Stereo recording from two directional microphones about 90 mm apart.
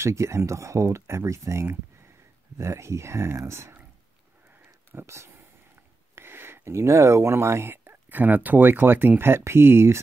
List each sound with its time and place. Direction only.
0.0 s speech: 30° right (ahead or behind)
4.9 s speech: 30° right (ahead or behind)